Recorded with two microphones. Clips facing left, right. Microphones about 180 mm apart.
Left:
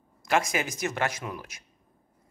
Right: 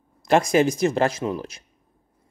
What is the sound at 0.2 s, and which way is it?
Speech, 35° right (ahead or behind).